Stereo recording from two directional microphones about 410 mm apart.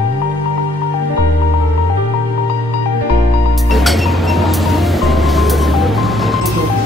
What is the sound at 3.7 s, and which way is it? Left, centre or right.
Music, centre.